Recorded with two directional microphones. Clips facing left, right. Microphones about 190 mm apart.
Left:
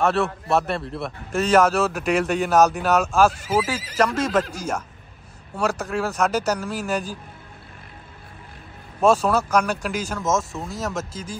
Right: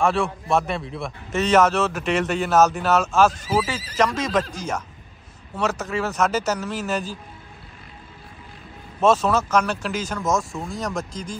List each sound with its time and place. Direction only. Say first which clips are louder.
0.0 s a man's voice: even; centre (ahead or behind)
9.0 s a man's voice: even; 10° left (ahead or behind)